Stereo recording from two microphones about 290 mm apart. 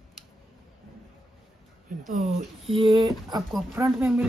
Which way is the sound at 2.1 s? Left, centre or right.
Right.